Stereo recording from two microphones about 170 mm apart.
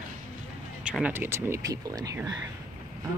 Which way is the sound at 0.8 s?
5° right (ahead or behind).